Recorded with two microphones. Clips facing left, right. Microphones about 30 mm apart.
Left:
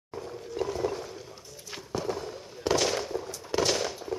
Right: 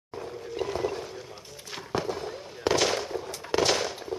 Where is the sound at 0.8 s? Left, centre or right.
Centre.